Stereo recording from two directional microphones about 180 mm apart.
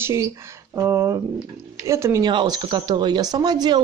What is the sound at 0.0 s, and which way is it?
A woman's voice, 15° right (ahead or behind).